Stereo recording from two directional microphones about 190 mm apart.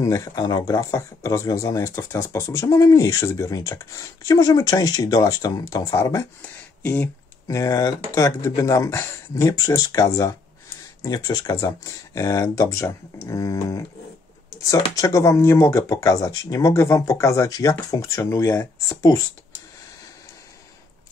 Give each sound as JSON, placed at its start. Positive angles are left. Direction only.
{"t": 0.0, "sound": "speech", "side_deg": 15}